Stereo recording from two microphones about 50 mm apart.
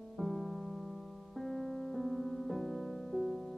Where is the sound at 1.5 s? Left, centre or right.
Centre.